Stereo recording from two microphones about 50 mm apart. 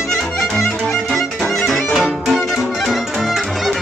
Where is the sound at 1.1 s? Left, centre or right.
Centre.